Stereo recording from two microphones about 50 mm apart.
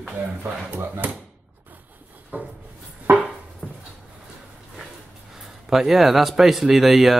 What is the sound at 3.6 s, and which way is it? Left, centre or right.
Dog, left.